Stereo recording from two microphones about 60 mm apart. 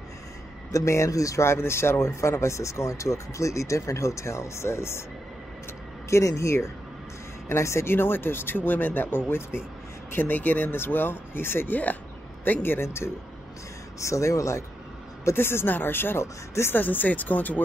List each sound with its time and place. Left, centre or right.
0.7 s speech: left
6.0 s speech: left
14.0 s speech: left
15.3 s speech: left
16.7 s speech: left